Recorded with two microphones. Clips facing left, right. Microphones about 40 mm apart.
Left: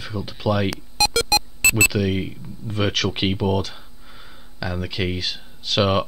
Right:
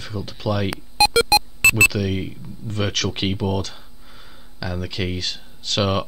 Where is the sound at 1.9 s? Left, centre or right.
Centre.